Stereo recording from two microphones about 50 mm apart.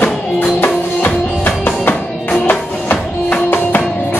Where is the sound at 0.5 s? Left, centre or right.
Left.